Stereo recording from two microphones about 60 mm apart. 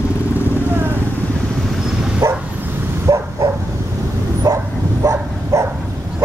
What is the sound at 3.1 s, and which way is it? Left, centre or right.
Bow-wow, right.